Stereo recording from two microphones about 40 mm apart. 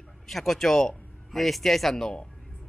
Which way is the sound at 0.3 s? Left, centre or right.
Centre.